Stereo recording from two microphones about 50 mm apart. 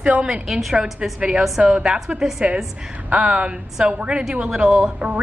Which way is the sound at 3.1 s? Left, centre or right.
Right.